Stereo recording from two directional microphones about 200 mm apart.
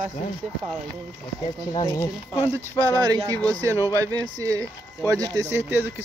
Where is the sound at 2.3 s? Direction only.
10° right (ahead or behind).